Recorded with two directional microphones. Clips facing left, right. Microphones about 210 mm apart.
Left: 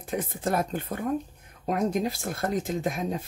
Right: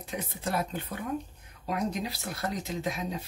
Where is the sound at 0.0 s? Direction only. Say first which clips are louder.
Left 5 dB; 50° left (ahead or behind).